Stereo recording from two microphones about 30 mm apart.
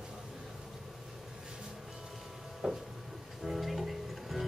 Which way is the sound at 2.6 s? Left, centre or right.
Right.